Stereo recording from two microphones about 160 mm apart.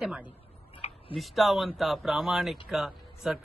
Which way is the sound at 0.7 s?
35° left (ahead or behind).